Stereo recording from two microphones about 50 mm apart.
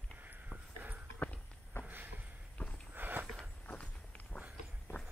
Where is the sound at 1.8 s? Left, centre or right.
Right.